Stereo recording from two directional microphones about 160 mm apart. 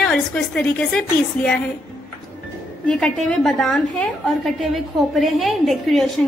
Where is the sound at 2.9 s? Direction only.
5° left (ahead or behind).